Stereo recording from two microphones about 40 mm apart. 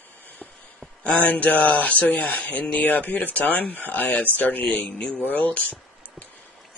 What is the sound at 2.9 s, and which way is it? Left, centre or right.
Speech, left.